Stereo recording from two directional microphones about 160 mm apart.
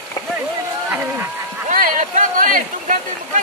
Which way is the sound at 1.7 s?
55° right (ahead or behind).